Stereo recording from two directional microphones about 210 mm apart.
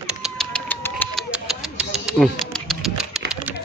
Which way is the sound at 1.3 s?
5° right (ahead or behind).